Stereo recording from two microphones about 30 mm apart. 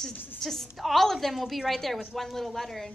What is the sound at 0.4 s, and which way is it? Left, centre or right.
A woman's voice, centre.